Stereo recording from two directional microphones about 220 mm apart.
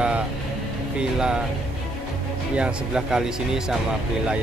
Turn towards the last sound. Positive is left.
turn(degrees=-5)  # may be behind; listen again after turning